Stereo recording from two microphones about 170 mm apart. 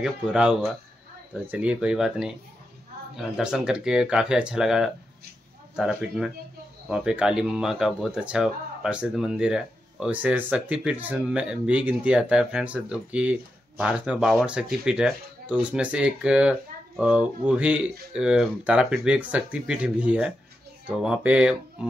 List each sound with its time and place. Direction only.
0.0 s speech: 5° right (ahead or behind)